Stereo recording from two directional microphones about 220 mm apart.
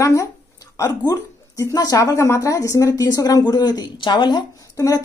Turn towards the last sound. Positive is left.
turn(degrees=15)  # may be behind; listen again after turning